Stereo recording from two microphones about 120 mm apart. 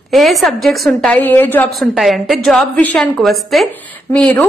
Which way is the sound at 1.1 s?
15° left (ahead or behind).